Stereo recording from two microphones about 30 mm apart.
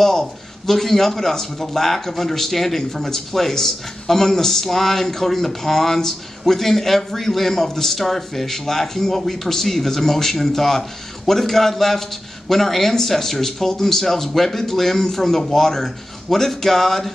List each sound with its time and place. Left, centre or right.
0.0 s speech: centre